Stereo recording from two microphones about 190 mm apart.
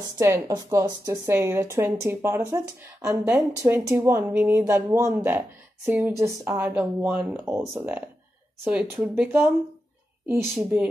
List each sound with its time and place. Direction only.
0.2 s speech: 20° right (ahead or behind)